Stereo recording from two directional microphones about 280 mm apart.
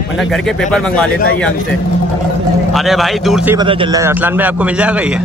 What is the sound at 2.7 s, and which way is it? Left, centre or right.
A man's voice, centre.